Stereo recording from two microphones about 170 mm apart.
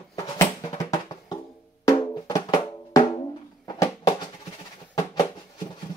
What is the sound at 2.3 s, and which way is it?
Music, 20° left (ahead or behind).